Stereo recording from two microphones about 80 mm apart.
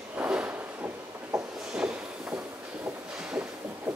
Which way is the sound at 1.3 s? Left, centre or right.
Centre.